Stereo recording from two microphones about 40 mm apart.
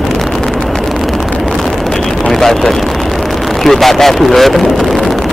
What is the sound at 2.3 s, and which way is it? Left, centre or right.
Speech, centre.